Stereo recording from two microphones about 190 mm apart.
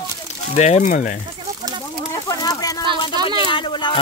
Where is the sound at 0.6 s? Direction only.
40° left (ahead or behind).